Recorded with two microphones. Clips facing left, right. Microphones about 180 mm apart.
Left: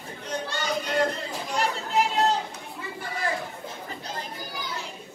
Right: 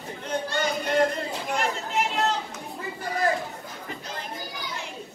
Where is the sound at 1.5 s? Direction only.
35° left (ahead or behind).